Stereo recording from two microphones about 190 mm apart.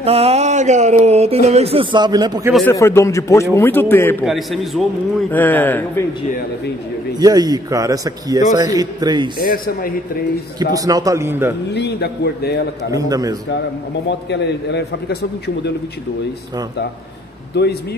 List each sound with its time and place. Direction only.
0.0 s speech: 30° right (ahead or behind)
2.7 s a man's voice: 15° left (ahead or behind)
4.3 s a man's voice: centre (ahead or behind)
7.2 s a man's voice: 20° right (ahead or behind)
9.4 s a man's voice: 50° left (ahead or behind)
10.7 s a man's voice: 20° right (ahead or behind)
11.7 s a man's voice: 60° left (ahead or behind)
12.9 s a man's voice: 20° right (ahead or behind)
14.0 s a man's voice: 65° left (ahead or behind)
17.5 s a man's voice: 60° left (ahead or behind)